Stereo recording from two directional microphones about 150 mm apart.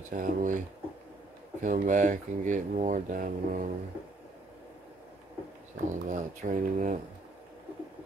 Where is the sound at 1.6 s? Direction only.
60° right (ahead or behind).